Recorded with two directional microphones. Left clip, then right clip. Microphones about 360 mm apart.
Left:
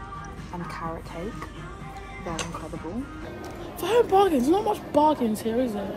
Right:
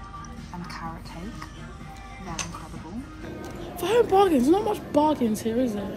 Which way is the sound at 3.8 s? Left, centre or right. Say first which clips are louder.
Even; centre.